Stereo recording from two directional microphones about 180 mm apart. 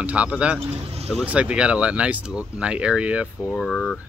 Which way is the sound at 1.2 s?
5° right (ahead or behind).